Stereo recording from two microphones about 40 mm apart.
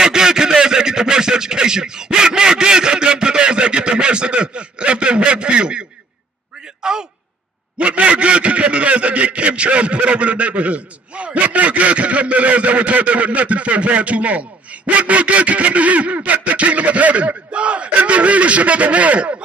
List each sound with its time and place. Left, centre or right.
0.0 s a sound: centre
6.8 s a man's voice: centre
7.8 s a man's voice: right